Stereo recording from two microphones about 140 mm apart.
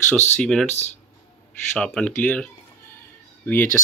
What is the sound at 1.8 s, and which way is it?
Speech, 5° left (ahead or behind).